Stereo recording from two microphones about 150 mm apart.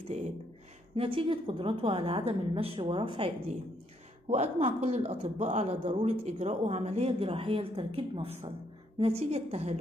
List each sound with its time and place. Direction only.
0.9 s a woman's voice: 35° right (ahead or behind)